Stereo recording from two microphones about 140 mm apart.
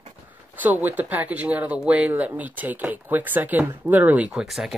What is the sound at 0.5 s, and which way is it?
Speech, 10° right (ahead or behind).